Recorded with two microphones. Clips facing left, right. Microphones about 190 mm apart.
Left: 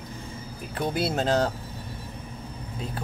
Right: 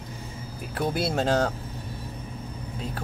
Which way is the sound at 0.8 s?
5° right (ahead or behind).